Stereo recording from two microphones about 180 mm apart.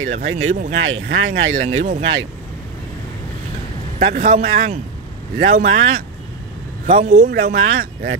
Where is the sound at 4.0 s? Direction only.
45° right (ahead or behind).